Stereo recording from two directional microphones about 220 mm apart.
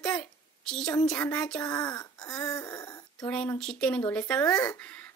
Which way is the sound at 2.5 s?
15° left (ahead or behind).